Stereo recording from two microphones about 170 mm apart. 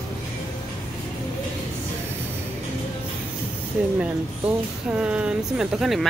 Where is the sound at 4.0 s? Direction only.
5° right (ahead or behind).